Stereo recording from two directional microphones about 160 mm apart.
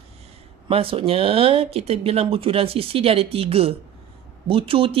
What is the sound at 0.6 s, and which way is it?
Speech, 35° right (ahead or behind).